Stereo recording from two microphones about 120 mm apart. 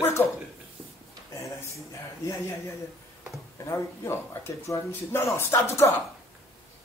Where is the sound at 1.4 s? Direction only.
25° left (ahead or behind).